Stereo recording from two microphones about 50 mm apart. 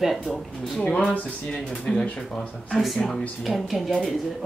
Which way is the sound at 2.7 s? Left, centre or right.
Centre.